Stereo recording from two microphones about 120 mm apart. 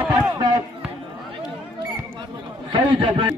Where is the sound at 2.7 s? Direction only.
45° right (ahead or behind).